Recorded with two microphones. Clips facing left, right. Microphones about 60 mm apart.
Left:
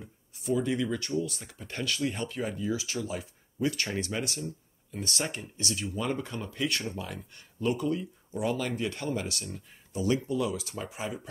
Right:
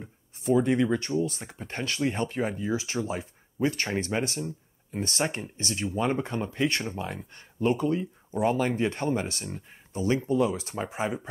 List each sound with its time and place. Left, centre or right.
0.0 s speech: right